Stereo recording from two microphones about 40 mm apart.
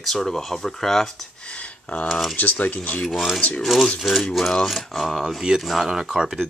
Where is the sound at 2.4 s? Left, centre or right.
Left.